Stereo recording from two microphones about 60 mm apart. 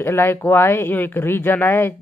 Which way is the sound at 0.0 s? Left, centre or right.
Left.